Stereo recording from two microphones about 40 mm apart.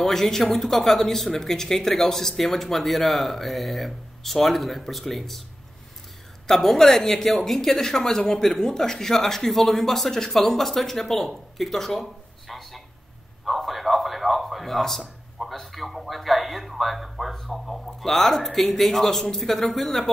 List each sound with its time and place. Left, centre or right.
0.0 s speech: centre
6.4 s speech: centre
13.5 s a sound: centre
15.5 s speech: centre